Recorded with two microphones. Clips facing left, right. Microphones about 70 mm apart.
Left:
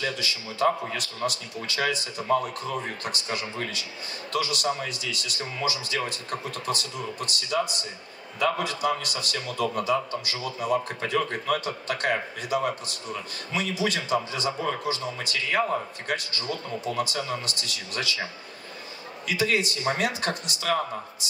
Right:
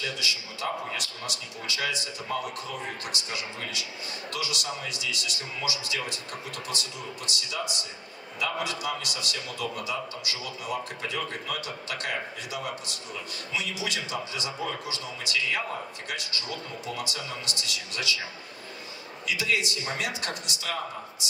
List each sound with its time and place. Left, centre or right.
0.0 s a man's voice: left
19.2 s a man's voice: left